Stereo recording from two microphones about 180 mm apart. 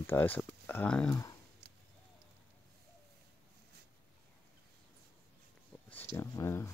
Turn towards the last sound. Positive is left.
turn(degrees=15)  # may be behind; listen again after turning